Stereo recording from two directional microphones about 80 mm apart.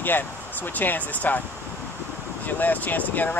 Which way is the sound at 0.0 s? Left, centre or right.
Left.